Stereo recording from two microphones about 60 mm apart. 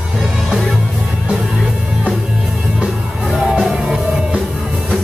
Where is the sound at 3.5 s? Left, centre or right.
Centre.